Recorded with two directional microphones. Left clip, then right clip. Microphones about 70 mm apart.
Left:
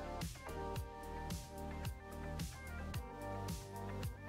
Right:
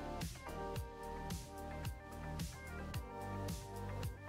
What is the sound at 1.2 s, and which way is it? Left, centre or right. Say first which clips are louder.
Music: even; centre.